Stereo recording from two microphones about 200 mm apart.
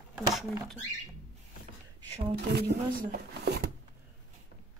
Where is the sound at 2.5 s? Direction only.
50° right (ahead or behind).